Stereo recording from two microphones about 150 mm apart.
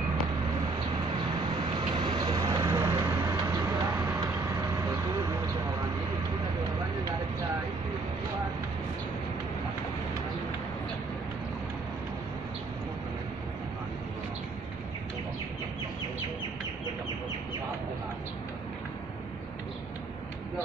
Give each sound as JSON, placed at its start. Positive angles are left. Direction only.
{"t": 2.0, "sound": "vehicle", "side_deg": -30}